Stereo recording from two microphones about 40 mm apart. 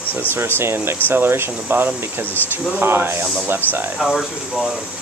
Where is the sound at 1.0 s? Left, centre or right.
Right.